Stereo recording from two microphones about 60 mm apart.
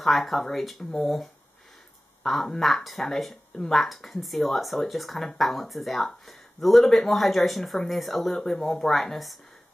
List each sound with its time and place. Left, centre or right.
0.0 s speech: centre